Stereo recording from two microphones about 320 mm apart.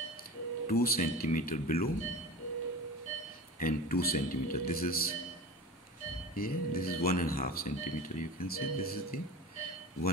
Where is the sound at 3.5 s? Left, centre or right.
Left.